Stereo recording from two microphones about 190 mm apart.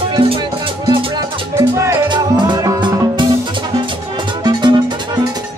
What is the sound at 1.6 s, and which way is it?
Music, 15° right (ahead or behind).